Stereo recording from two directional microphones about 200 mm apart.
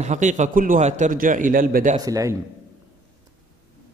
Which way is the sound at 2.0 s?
15° right (ahead or behind).